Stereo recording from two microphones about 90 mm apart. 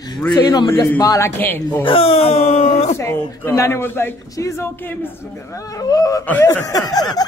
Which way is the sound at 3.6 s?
25° left (ahead or behind).